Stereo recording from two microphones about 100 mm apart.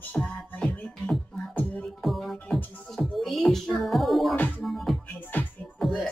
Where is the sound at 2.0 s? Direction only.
Centre (ahead or behind).